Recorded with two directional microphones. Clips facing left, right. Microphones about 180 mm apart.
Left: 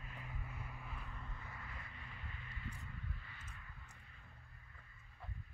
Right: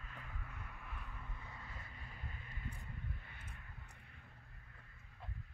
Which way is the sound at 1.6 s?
35° right (ahead or behind).